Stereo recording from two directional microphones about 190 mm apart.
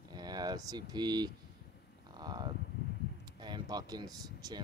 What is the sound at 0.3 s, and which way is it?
Speech, 20° right (ahead or behind).